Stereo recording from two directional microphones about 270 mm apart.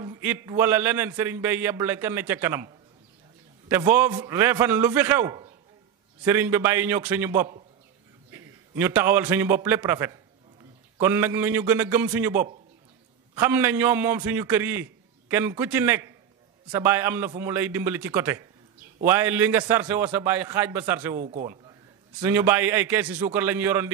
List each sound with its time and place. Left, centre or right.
0.0 s a man's voice: centre
3.9 s a man's voice: centre
21.2 s a man's voice: right
22.2 s a man's voice: centre